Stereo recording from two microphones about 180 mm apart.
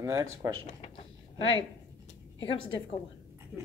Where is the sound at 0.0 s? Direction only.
15° right (ahead or behind).